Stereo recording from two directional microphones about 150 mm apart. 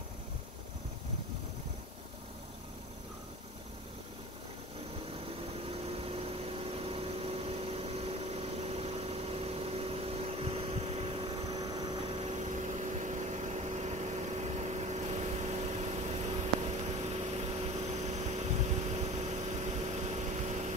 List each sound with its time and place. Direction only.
5.7 s vehicle: 40° right (ahead or behind)
11.5 s vehicle: 25° right (ahead or behind)
12.3 s vehicle: 50° right (ahead or behind)